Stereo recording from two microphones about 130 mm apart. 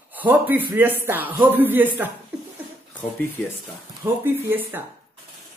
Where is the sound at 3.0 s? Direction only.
15° left (ahead or behind).